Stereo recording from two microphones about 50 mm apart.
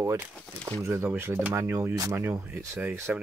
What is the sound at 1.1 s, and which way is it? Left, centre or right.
Speech, right.